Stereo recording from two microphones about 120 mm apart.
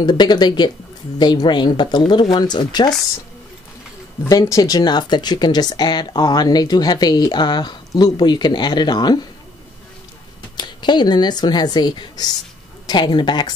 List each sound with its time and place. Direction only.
0.0 s speech: 40° left (ahead or behind)
4.2 s speech: 25° left (ahead or behind)
10.6 s speech: 40° left (ahead or behind)